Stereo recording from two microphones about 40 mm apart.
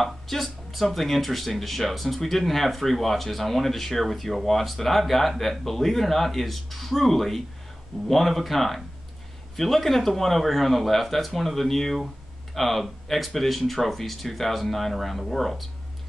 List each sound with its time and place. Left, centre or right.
0.0 s speech: centre